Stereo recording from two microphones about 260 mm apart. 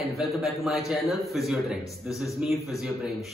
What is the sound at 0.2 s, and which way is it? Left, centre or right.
A man's voice, centre.